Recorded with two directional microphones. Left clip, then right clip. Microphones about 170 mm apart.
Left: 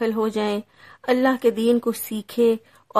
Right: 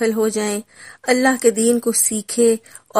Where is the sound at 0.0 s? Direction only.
15° right (ahead or behind).